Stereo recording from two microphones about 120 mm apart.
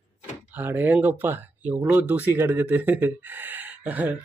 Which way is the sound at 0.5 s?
15° right (ahead or behind).